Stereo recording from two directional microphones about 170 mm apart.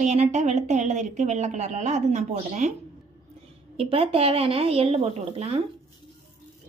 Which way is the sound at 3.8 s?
35° right (ahead or behind).